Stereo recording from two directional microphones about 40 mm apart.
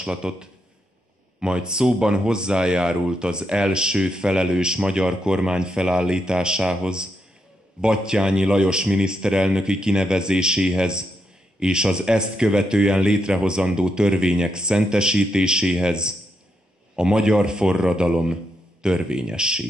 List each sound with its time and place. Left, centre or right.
0.0 s speech: centre